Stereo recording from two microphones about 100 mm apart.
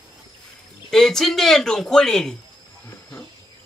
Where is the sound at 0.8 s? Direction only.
5° left (ahead or behind).